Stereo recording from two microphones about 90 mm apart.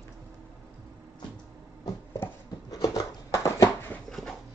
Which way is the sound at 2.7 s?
40° left (ahead or behind).